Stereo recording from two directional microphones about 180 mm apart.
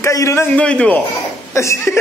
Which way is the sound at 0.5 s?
5° left (ahead or behind).